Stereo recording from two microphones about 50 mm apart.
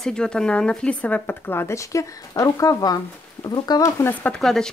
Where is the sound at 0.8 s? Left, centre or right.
Left.